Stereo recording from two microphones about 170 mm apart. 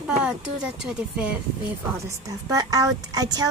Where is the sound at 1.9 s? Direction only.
20° right (ahead or behind).